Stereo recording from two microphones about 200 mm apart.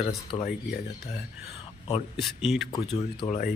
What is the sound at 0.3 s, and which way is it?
Speech, 20° left (ahead or behind).